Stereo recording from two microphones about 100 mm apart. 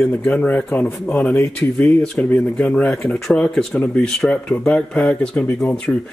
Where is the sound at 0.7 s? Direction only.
25° left (ahead or behind).